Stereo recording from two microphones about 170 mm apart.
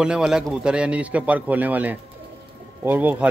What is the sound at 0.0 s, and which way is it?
Speech, 5° right (ahead or behind).